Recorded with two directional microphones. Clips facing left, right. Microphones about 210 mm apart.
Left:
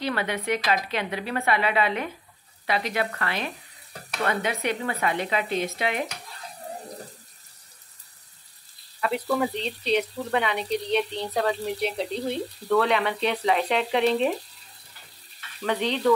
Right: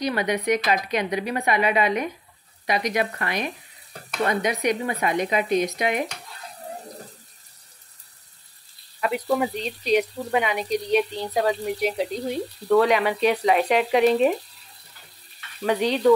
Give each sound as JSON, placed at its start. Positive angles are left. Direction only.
{"t": 0.0, "sound": "speech", "side_deg": -15}
{"t": 9.0, "sound": "speech", "side_deg": -15}
{"t": 15.6, "sound": "speech", "side_deg": -10}